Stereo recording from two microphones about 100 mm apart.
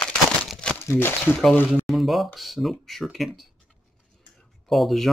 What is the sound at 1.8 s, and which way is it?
Speech, centre (ahead or behind).